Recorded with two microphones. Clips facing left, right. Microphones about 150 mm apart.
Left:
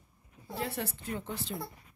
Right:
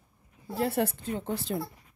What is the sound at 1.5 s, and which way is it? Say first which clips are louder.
Speech: right 7 dB; 55° right (ahead or behind).